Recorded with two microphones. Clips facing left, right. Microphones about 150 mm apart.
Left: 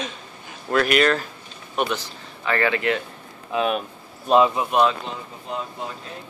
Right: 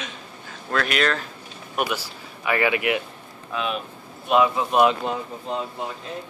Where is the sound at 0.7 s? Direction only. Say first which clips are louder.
Left 4 dB; 5° left (ahead or behind).